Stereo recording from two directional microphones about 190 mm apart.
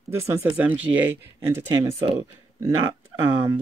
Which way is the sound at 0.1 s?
15° right (ahead or behind).